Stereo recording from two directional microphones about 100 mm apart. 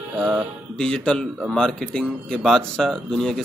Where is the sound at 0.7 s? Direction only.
10° left (ahead or behind).